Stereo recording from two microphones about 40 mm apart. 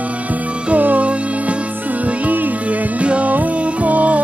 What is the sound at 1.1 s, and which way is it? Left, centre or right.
Music, right.